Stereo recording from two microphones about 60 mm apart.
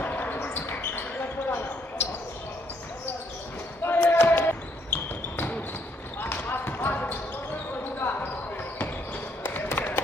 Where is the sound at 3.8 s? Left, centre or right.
Left.